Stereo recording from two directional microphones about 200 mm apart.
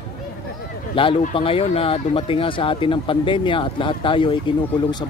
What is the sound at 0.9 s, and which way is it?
Speech, 25° left (ahead or behind).